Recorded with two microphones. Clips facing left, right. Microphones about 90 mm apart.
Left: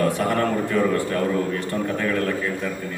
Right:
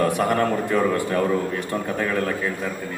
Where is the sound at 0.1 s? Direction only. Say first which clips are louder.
Right 1 dB; 20° right (ahead or behind).